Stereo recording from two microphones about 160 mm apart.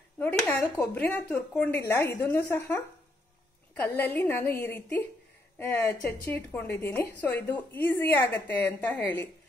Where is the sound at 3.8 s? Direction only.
10° left (ahead or behind).